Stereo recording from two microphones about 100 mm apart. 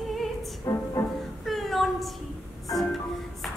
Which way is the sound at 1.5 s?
Centre (ahead or behind).